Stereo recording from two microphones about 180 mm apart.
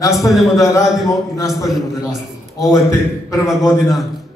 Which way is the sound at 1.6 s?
Centre (ahead or behind).